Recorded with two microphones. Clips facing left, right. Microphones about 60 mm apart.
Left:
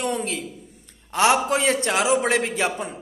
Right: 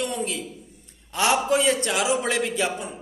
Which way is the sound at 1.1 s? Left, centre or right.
Left.